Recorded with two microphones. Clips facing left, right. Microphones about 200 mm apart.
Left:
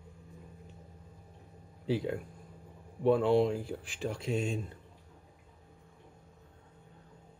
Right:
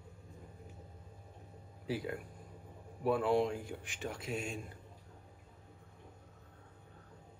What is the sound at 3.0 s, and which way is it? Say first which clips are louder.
Speech: left 5 dB; 30° left (ahead or behind).